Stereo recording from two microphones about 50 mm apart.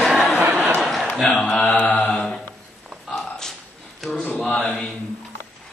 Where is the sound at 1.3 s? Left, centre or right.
Centre.